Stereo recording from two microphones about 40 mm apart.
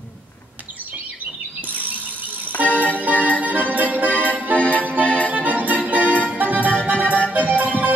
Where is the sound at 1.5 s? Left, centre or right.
Right.